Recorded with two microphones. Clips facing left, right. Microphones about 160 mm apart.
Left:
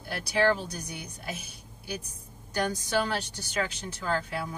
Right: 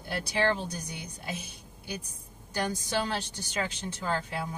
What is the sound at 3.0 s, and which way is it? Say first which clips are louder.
Speech: left 1 dB; 20° right (ahead or behind).